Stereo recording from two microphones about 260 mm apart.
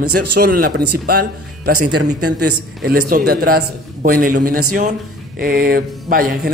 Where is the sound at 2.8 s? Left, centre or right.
Right.